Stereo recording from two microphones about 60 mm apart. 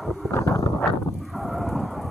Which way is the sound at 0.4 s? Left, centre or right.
Left.